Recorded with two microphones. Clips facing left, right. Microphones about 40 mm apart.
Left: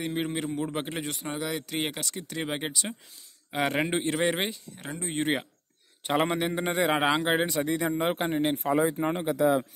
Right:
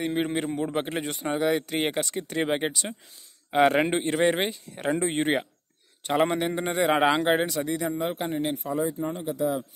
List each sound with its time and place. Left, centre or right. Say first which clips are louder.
0.0 s a man's voice: right 3 dB; centre
2.5 s a man's voice: right 5 dB; centre
4.8 s speech: right 12 dB; right
5.2 s a man's voice: right 3 dB; centre
7.4 s speech: even; centre
8.0 s speech: left 1 dB; left
8.5 s speech: left 3 dB; left